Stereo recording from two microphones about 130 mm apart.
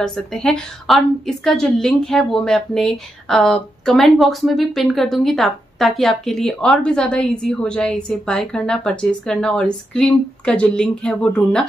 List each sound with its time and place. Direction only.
0.0 s a woman's voice: 5° left (ahead or behind)